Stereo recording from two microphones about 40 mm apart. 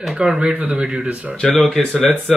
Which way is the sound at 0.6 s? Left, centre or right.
Right.